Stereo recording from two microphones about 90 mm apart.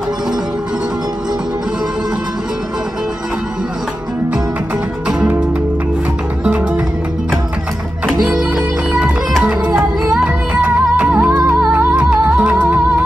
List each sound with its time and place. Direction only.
5.0 s music: 10° right (ahead or behind)
8.1 s music: 5° right (ahead or behind)
10.2 s music: 15° right (ahead or behind)